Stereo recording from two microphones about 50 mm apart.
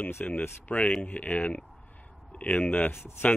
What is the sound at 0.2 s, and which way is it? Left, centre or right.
Speech, left.